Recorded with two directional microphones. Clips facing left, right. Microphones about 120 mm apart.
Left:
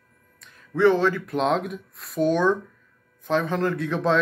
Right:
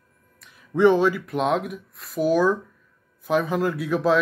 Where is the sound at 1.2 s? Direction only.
5° right (ahead or behind).